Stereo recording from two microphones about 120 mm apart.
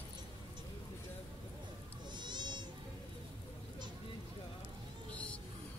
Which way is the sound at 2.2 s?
40° right (ahead or behind).